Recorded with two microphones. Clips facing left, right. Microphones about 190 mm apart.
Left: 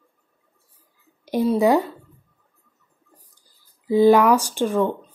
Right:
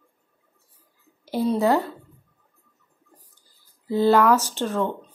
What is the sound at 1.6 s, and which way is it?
Speech, 15° left (ahead or behind).